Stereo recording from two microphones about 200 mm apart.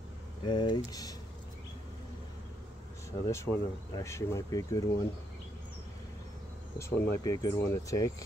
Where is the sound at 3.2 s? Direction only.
15° left (ahead or behind).